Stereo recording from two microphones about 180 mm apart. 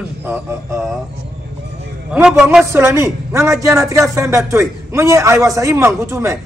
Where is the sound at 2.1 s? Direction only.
5° right (ahead or behind).